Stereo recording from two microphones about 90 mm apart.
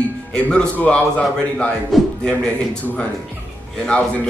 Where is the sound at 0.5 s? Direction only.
15° left (ahead or behind).